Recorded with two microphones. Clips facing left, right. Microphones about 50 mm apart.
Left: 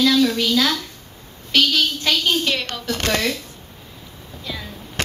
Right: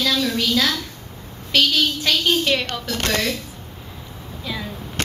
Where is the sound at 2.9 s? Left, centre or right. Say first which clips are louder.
Left 2 dB; left.